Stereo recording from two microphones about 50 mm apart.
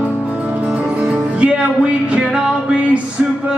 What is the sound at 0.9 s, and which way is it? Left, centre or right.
Music, right.